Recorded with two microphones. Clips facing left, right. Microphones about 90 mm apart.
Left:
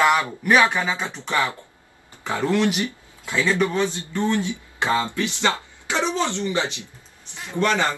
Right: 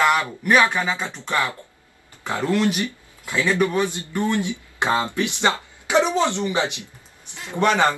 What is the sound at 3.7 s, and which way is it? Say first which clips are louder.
A man's voice: right 1 dB; 15° right (ahead or behind).